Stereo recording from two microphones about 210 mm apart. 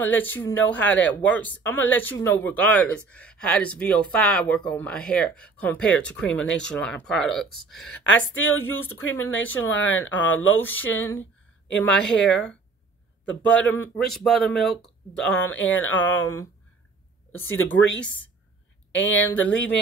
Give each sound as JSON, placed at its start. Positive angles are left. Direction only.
{"t": 0.0, "sound": "speech", "side_deg": 10}
{"t": 17.6, "sound": "speech", "side_deg": 5}
{"t": 18.9, "sound": "speech", "side_deg": 65}